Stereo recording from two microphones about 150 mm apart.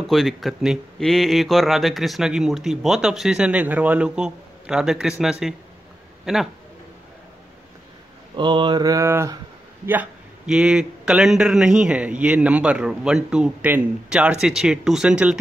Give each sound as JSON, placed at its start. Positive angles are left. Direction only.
{"t": 0.0, "sound": "speech", "side_deg": 0}
{"t": 8.4, "sound": "a sound", "side_deg": -30}
{"t": 9.8, "sound": "speech", "side_deg": -10}